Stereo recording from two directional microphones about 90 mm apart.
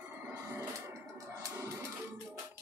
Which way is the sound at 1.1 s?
35° right (ahead or behind).